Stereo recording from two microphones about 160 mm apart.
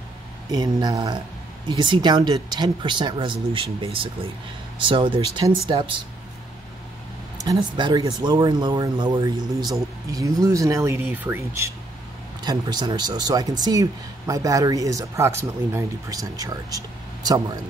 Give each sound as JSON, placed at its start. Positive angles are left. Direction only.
{"t": 0.5, "sound": "speech", "side_deg": -25}
{"t": 7.4, "sound": "speech", "side_deg": -30}
{"t": 12.4, "sound": "speech", "side_deg": -25}